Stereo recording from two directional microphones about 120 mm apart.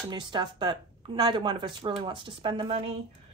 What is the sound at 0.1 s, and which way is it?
Speech, 35° right (ahead or behind).